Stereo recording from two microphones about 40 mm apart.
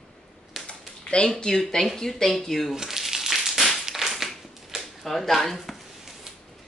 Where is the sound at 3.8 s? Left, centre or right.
Centre.